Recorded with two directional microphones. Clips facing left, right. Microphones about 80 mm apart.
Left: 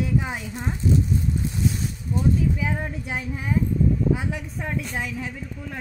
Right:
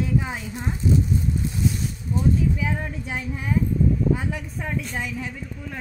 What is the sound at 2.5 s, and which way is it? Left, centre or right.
Speech, centre.